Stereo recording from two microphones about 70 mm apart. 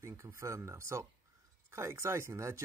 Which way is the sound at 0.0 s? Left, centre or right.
Right.